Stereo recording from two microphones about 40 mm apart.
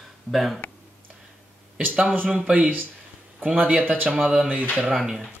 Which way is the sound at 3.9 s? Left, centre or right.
Right.